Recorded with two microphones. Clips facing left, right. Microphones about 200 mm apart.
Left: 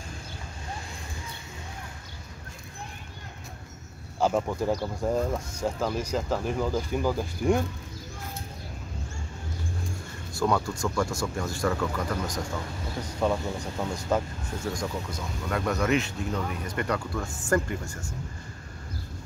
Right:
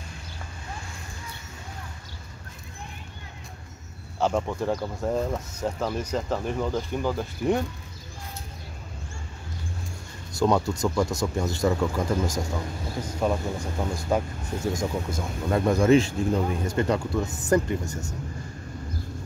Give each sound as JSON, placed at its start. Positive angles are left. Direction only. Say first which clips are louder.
{"t": 4.2, "sound": "speech", "louder": "even", "side_deg": 5}
{"t": 10.4, "sound": "speech", "louder": "right 4 dB", "side_deg": -25}
{"t": 13.2, "sound": "speech", "louder": "right 1 dB", "side_deg": -10}
{"t": 14.7, "sound": "speech", "louder": "right 4 dB", "side_deg": -20}